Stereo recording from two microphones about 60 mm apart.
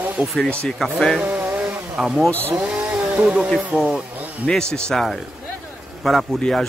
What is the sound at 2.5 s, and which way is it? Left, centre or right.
Chainsaw, centre.